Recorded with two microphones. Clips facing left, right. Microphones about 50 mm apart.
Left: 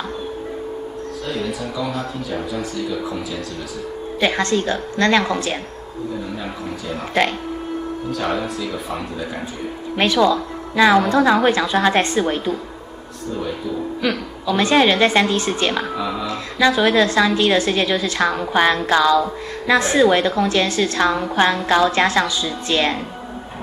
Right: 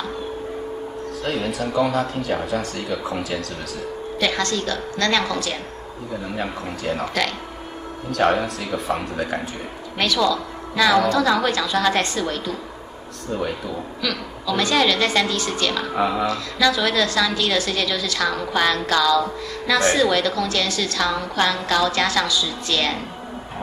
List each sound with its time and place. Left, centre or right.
1.2 s speech: right
4.2 s a woman's voice: left
6.4 s speech: right
8.1 s speech: right
9.9 s a woman's voice: left
14.0 s a woman's voice: left